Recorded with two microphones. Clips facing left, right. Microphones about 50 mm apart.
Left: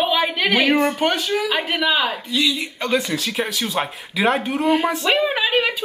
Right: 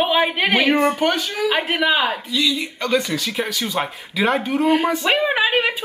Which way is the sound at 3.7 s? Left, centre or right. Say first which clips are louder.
Even; centre.